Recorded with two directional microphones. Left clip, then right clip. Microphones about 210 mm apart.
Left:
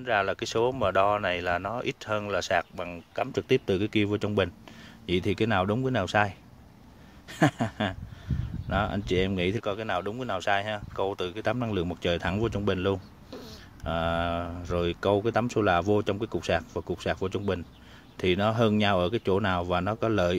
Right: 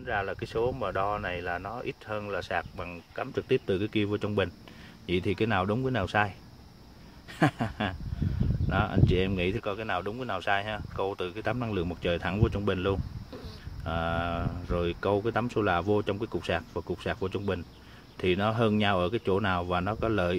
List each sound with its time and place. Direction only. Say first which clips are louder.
0.0 s speech: left 5 dB; 40° left (ahead or behind); by 6.3 s 20° left (ahead or behind)
7.3 s speech: left 2 dB; 25° left (ahead or behind)